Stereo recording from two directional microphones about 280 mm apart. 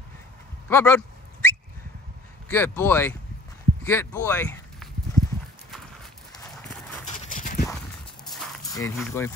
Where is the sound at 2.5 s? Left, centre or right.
Centre.